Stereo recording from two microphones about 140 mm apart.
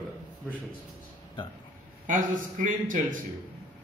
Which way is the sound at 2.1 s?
70° right (ahead or behind).